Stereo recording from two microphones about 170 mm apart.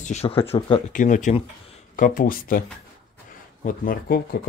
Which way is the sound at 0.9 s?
50° left (ahead or behind).